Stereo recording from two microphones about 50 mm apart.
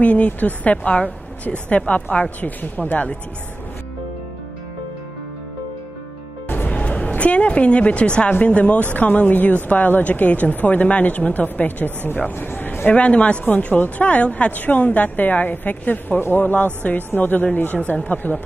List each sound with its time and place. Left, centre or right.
0.0 s speech: left
6.7 s music: left
7.2 s a woman's voice: left
12.4 s a sound: left
12.9 s a woman's voice: left